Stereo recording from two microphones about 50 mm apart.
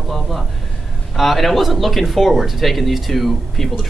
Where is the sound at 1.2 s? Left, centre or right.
Centre.